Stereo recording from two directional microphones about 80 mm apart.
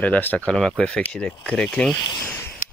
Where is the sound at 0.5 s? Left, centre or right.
Centre.